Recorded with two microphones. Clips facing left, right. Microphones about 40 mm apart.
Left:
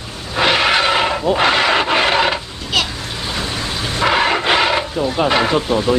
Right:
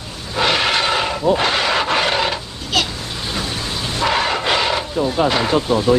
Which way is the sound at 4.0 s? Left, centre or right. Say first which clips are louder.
Left 3 dB; left.